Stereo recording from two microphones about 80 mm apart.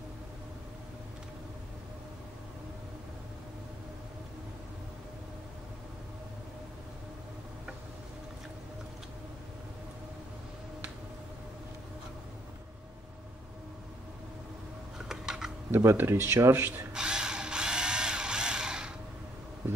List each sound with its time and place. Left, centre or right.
15.0 s a sound: centre
15.7 s speech: right
16.9 s drill: centre